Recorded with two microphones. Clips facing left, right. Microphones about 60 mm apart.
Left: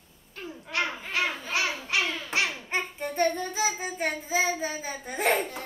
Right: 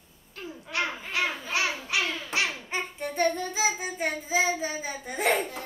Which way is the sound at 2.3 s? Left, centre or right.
Centre.